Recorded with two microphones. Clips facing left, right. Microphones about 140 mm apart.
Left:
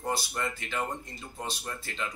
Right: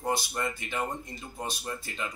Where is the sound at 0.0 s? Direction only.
15° right (ahead or behind).